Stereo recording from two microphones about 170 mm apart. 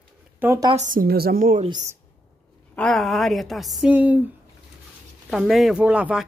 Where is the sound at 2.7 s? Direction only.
Centre (ahead or behind).